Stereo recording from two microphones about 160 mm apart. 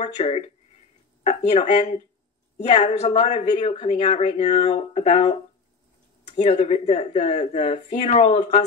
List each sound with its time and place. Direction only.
0.0 s speech: 40° left (ahead or behind)